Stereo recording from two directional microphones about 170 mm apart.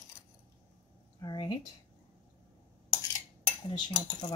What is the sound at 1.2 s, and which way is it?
Speech, 25° left (ahead or behind).